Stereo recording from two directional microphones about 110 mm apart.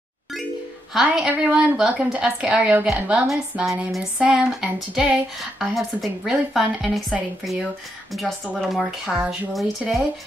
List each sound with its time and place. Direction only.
0.9 s a woman's voice: 5° right (ahead or behind)